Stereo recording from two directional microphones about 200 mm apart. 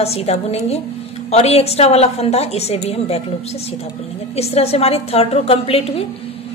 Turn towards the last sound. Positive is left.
turn(degrees=30)  # may be behind; listen again after turning